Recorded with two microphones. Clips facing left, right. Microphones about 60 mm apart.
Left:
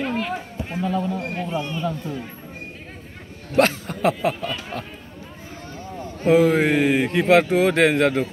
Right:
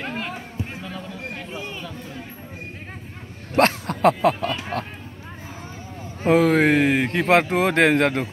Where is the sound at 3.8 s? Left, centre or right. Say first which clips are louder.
Right 3 dB; right.